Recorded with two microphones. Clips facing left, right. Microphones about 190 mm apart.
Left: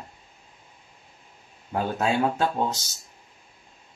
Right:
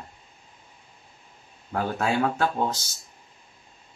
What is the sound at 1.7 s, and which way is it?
Speech, 20° left (ahead or behind).